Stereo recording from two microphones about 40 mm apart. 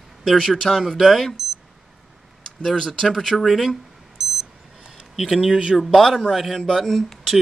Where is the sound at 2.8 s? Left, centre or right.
Centre.